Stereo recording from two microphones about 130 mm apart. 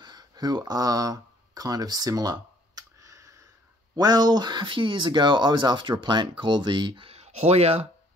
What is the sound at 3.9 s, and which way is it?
Speech, 30° right (ahead or behind).